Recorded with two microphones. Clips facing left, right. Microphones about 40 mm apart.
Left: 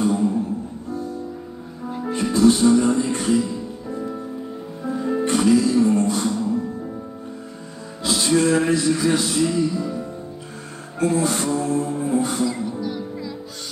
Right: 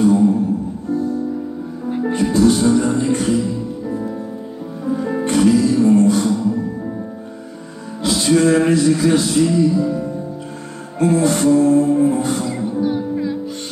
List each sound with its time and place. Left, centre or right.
1.9 s music: right
5.2 s music: right
8.0 s music: right
11.0 s music: right
12.8 s music: right